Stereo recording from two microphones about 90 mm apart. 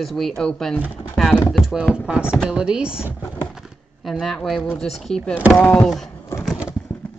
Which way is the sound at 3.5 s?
5° right (ahead or behind).